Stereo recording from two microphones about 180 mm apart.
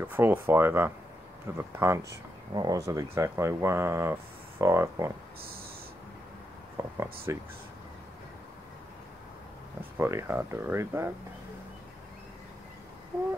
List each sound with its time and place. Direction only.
0.0 s speech: 10° right (ahead or behind)
6.8 s speech: 15° right (ahead or behind)
9.9 s speech: 15° right (ahead or behind)